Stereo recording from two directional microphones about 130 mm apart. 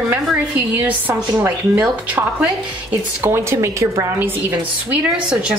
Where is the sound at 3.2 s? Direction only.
20° right (ahead or behind).